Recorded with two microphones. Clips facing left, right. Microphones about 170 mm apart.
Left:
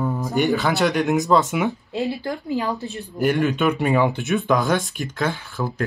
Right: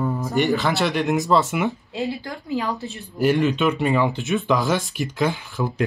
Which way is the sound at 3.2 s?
Centre (ahead or behind).